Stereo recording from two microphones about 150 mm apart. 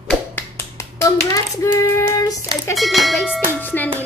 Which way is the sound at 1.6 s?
20° left (ahead or behind).